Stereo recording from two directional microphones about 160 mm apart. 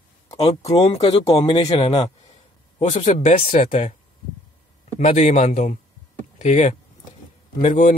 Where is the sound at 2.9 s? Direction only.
50° left (ahead or behind).